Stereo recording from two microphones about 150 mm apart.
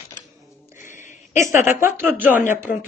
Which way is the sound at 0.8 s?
55° left (ahead or behind).